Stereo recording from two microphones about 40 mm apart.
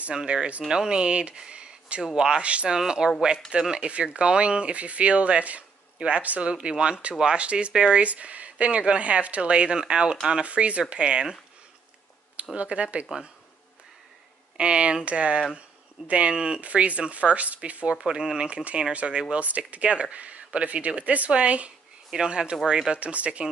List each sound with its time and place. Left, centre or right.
0.3 s speech: right
0.7 s speech: centre
2.4 s speech: right
2.7 s speech: centre
7.7 s speech: centre
8.0 s speech: right
12.5 s speech: right
14.6 s speech: right
16.6 s speech: right
17.9 s speech: right
18.5 s speech: right
22.1 s speech: centre
22.9 s speech: right